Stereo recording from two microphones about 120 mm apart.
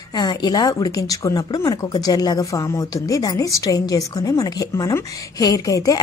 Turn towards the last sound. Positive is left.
turn(degrees=30)  # may be behind; listen again after turning